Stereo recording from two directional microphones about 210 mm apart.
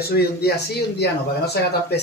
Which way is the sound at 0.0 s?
50° left (ahead or behind).